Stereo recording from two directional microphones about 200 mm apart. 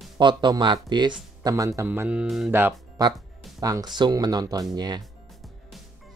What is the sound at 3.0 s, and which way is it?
Speech, 20° right (ahead or behind).